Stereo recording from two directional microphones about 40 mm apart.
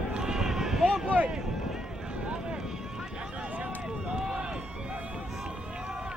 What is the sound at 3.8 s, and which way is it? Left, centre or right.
Run, centre.